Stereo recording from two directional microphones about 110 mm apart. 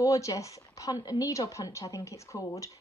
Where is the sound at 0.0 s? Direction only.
30° left (ahead or behind).